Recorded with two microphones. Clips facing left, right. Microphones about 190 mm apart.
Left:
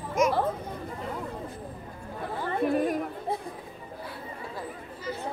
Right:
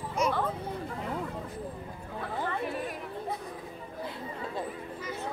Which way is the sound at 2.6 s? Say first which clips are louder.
Left 9 dB; 45° left (ahead or behind).